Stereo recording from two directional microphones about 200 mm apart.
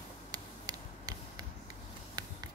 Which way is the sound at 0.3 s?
20° right (ahead or behind).